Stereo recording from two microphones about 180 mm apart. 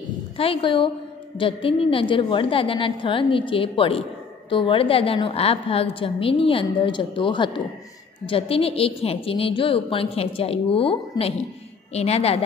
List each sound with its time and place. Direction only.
0.4 s a woman's voice: 30° left (ahead or behind)